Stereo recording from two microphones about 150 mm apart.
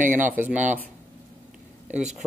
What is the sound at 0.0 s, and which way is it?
Speech, 60° right (ahead or behind).